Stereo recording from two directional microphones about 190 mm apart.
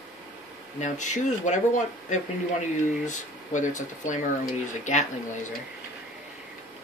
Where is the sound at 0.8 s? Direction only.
40° left (ahead or behind).